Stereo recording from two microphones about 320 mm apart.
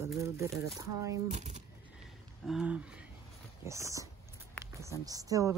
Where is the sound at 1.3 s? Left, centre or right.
Right.